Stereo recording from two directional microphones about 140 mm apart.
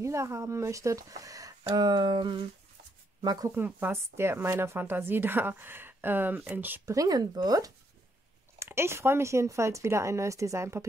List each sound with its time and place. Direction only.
0.0 s speech: 20° right (ahead or behind)
3.5 s a woman's voice: 15° right (ahead or behind)
7.0 s speech: 25° right (ahead or behind)